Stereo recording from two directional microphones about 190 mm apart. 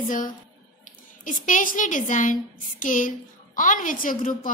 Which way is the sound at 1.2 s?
45° left (ahead or behind).